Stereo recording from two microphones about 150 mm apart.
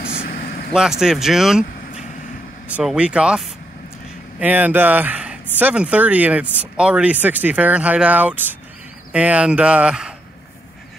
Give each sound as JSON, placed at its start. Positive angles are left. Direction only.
{"t": 0.0, "sound": "vehicle", "side_deg": 85}
{"t": 0.7, "sound": "speech", "side_deg": -5}